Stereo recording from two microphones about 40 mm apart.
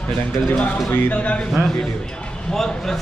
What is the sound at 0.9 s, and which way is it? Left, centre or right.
Speech, left.